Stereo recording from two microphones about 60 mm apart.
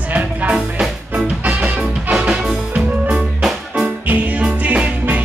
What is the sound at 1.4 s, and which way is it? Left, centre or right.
Music, right.